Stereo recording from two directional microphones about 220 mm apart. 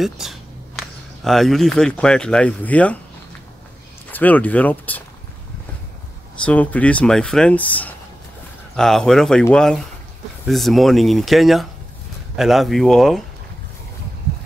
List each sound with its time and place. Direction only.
0.0 s speech: centre (ahead or behind)
4.1 s speech: 5° left (ahead or behind)
6.4 s speech: 5° left (ahead or behind)